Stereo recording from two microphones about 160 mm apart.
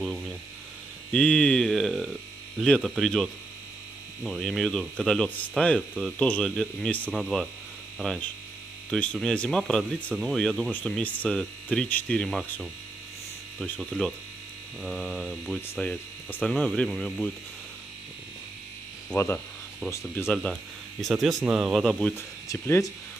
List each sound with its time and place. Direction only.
1.1 s speech: 5° left (ahead or behind)
19.0 s speech: 10° left (ahead or behind)
21.0 s speech: centre (ahead or behind)
22.1 s speech: 15° left (ahead or behind)